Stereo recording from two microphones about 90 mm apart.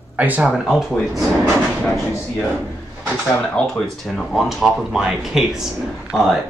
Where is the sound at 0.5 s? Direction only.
Centre (ahead or behind).